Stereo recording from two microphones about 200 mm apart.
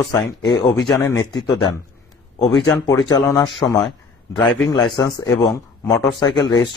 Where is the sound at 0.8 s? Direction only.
20° left (ahead or behind).